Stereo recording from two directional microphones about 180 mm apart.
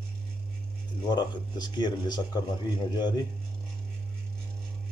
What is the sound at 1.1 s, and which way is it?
Speech, 25° left (ahead or behind).